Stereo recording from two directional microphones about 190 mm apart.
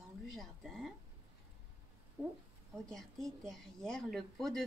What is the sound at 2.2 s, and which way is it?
Speech, 10° right (ahead or behind).